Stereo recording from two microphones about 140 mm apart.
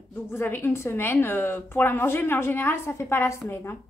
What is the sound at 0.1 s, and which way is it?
Speech, 15° left (ahead or behind).